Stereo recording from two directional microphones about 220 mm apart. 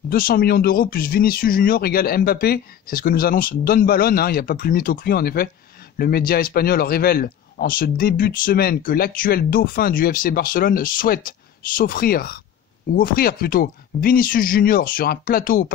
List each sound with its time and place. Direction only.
0.1 s speech: 40° left (ahead or behind)